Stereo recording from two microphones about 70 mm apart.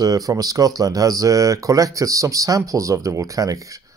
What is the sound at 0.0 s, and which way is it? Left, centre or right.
Speech, right.